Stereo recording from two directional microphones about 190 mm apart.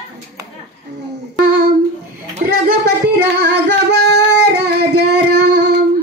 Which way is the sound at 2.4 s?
50° right (ahead or behind).